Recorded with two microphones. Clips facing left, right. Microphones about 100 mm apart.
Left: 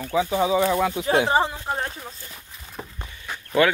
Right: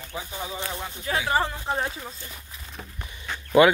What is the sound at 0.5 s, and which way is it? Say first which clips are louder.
Speech: left 13 dB; 90° left.